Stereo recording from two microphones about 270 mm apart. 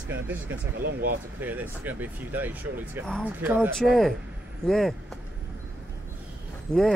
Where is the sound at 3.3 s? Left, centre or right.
Centre.